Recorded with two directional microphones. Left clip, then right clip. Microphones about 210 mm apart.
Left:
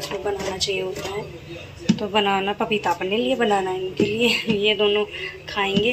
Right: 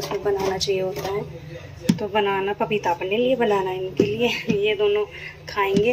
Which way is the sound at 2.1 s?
5° right (ahead or behind).